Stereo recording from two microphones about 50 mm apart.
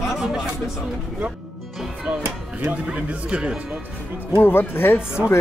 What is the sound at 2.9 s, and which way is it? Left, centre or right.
Speech, right.